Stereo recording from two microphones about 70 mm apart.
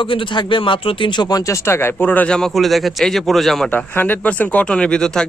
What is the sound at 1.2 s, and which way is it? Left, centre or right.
Speech, left.